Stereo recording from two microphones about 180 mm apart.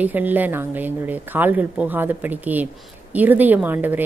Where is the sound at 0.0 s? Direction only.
10° right (ahead or behind).